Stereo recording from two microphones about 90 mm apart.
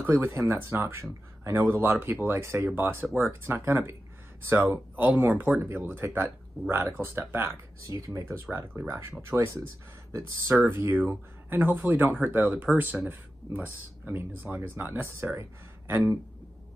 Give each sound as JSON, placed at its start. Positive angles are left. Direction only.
{"t": 0.0, "sound": "speech", "side_deg": -30}
{"t": 10.6, "sound": "speech", "side_deg": -25}